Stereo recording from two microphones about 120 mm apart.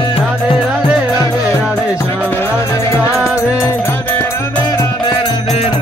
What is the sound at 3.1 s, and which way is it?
Music, centre (ahead or behind).